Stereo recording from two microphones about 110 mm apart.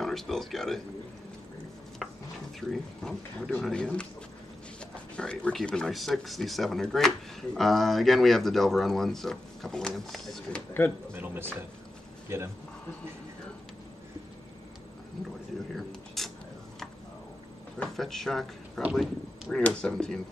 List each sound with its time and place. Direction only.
0.0 s speech: 5° left (ahead or behind)
2.0 s stir: centre (ahead or behind)
2.7 s speech: 5° left (ahead or behind)
5.1 s speech: 10° left (ahead or behind)
11.1 s speech: 20° right (ahead or behind)
15.7 s a sound: centre (ahead or behind)
17.9 s speech: 5° left (ahead or behind)
19.6 s speech: 10° left (ahead or behind)